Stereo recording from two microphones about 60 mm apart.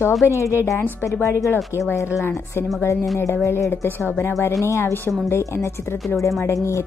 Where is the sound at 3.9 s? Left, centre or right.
Left.